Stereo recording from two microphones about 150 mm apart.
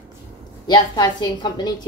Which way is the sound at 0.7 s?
30° left (ahead or behind).